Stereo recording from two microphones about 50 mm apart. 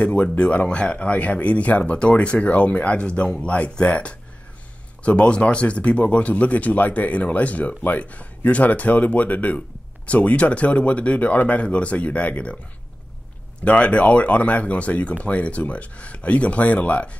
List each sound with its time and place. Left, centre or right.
0.0 s speech: left
13.7 s speech: left